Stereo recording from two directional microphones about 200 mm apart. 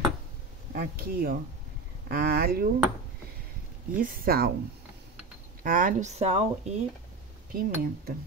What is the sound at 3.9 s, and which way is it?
Speech, 50° right (ahead or behind).